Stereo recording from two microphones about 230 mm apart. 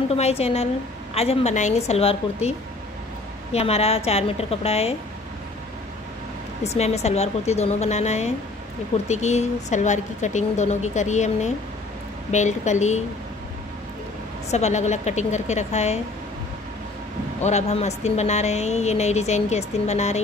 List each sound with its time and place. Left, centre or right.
0.1 s speech: left
3.5 s speech: left
6.6 s speech: left
14.5 s speech: left
17.4 s speech: left